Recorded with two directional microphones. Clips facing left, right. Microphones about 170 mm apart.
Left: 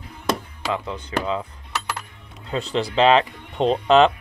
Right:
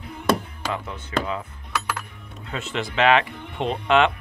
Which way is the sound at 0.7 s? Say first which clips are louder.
Left 4 dB; 30° left (ahead or behind).